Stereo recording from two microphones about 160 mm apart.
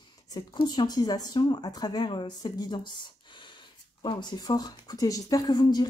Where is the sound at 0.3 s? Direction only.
25° left (ahead or behind).